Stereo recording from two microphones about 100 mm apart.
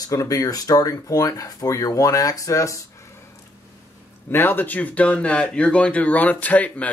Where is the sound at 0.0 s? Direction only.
35° left (ahead or behind).